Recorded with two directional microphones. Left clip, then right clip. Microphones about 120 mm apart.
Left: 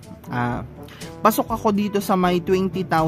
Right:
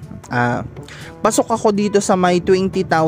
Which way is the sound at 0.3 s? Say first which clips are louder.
Right 7 dB; 45° right (ahead or behind).